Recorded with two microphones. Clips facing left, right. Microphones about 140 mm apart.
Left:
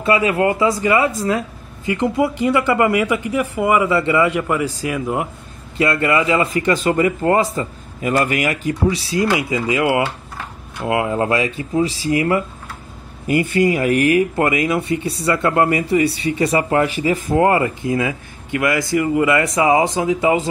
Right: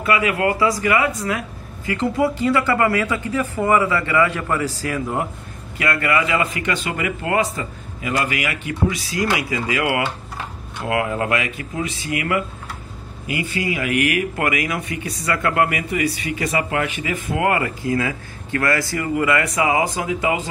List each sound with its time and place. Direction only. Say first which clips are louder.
0.0 s speech: left 3 dB; 30° left (ahead or behind)
13.3 s speech: left 8 dB; 50° left (ahead or behind); by 20.4 s 30° left (ahead or behind)